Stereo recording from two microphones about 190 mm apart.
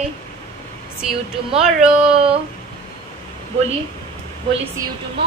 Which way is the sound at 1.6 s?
5° right (ahead or behind).